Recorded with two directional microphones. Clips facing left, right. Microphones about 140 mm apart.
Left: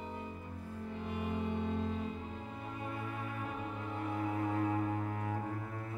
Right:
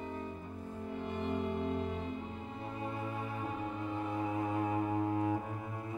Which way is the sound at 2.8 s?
25° right (ahead or behind).